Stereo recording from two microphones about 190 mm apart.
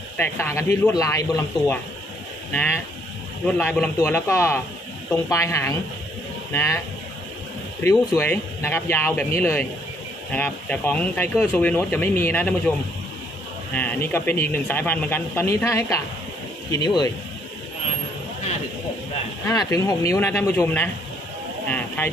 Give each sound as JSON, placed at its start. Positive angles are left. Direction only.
{"t": 0.2, "sound": "speech", "side_deg": 15}
{"t": 7.8, "sound": "speech", "side_deg": 15}
{"t": 13.7, "sound": "speech", "side_deg": 10}
{"t": 19.4, "sound": "speech", "side_deg": 15}